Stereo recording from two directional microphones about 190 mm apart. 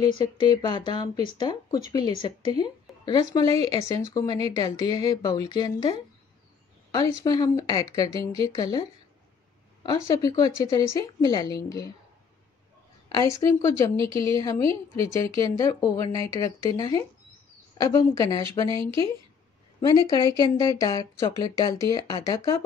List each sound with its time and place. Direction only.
0.1 s speech: 25° left (ahead or behind)
9.8 s speech: 20° left (ahead or behind)
13.2 s speech: 15° left (ahead or behind)
14.1 s speech: 30° right (ahead or behind)
14.4 s speech: 15° left (ahead or behind)
18.7 s speech: 25° right (ahead or behind)
20.1 s speech: 20° left (ahead or behind)